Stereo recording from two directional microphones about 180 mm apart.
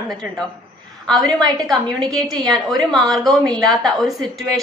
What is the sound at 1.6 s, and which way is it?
A woman's voice, centre (ahead or behind).